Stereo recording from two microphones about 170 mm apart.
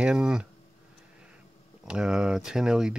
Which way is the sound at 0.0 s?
5° right (ahead or behind).